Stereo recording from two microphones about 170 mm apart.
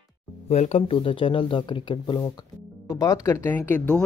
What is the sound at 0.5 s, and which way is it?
Speech, 40° left (ahead or behind).